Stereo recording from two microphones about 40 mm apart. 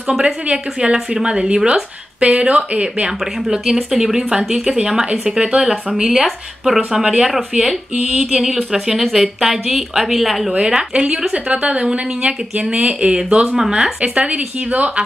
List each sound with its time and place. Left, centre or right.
0.2 s speech: right
3.9 s speech: centre
6.0 s speech: centre
6.9 s speech: centre
8.7 s speech: centre
10.6 s speech: right
14.0 s speech: right